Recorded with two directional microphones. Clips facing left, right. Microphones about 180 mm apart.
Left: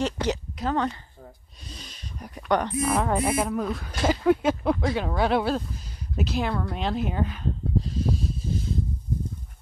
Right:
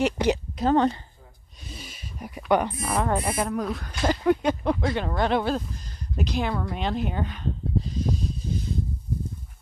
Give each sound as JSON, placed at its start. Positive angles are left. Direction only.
{"t": 0.0, "sound": "speech", "side_deg": -10}
{"t": 0.6, "sound": "a woman's voice", "side_deg": -30}
{"t": 1.7, "sound": "speech", "side_deg": -5}